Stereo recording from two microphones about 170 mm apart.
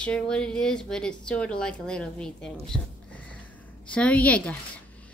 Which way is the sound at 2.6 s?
5° left (ahead or behind).